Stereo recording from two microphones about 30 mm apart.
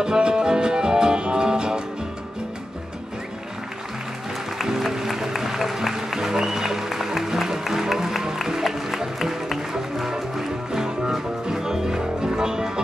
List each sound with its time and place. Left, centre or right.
0.0 s music: right
4.6 s music: centre
5.8 s speech: centre
7.2 s music: centre